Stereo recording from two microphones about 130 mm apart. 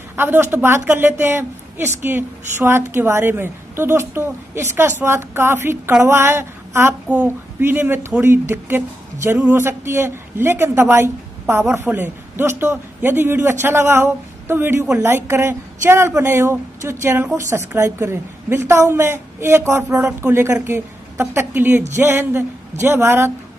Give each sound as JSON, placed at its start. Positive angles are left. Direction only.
{"t": 0.1, "sound": "a woman's voice", "side_deg": -15}